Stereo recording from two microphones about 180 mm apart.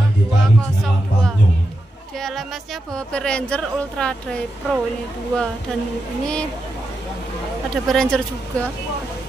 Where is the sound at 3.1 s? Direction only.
5° left (ahead or behind).